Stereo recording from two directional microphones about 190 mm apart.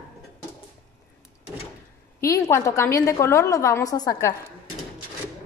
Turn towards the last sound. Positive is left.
turn(degrees=20)  # may be behind; listen again after turning